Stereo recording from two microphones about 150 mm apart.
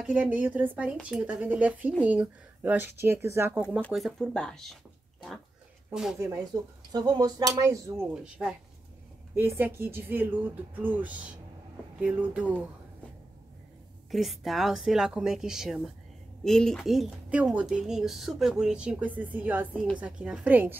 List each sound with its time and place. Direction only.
0.0 s speech: 10° right (ahead or behind)
3.9 s a woman's voice: centre (ahead or behind)
6.1 s speech: 20° right (ahead or behind)
8.1 s a woman's voice: 5° right (ahead or behind)
14.1 s a woman's voice: centre (ahead or behind)